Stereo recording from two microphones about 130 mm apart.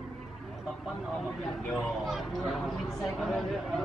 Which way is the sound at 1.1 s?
Centre (ahead or behind).